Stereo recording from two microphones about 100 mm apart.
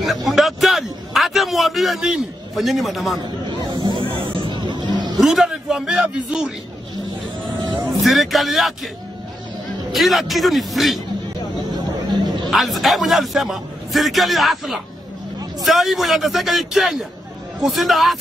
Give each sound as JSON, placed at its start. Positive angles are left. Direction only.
{"t": 0.0, "sound": "a sound", "side_deg": 0}
{"t": 3.2, "sound": "speech", "side_deg": -50}
{"t": 4.5, "sound": "music", "side_deg": -50}
{"t": 5.1, "sound": "a man's voice", "side_deg": 0}
{"t": 7.9, "sound": "a man's voice", "side_deg": 0}
{"t": 9.9, "sound": "a man's voice", "side_deg": 0}
{"t": 12.4, "sound": "a man's voice", "side_deg": 0}